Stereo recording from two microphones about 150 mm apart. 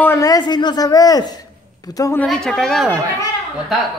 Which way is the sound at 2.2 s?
5° left (ahead or behind).